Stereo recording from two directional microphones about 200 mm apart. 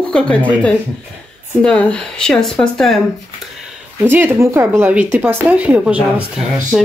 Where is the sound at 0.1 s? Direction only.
5° left (ahead or behind).